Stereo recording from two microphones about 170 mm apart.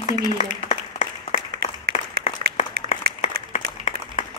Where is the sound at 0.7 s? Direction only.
45° left (ahead or behind).